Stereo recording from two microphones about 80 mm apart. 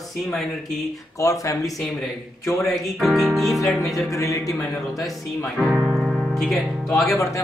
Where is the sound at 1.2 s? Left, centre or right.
Left.